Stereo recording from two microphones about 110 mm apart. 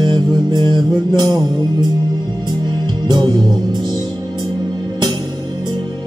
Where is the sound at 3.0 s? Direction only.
40° right (ahead or behind).